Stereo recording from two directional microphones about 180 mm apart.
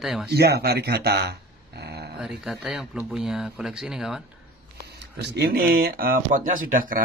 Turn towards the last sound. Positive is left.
turn(degrees=-50)  # may be behind; listen again after turning